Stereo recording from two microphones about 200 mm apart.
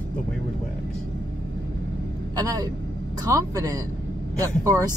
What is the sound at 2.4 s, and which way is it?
Speech, 20° right (ahead or behind).